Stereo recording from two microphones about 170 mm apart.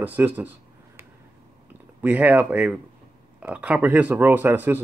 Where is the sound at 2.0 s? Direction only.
10° right (ahead or behind).